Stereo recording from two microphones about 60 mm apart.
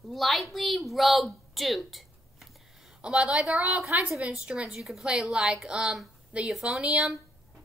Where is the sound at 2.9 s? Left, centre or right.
Centre.